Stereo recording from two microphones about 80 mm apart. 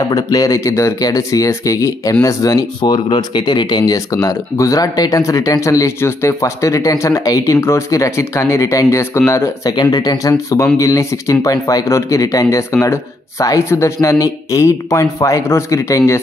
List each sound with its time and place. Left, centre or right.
0.1 s speech: left
2.8 s speech: left
7.5 s speech: left
9.7 s speech: left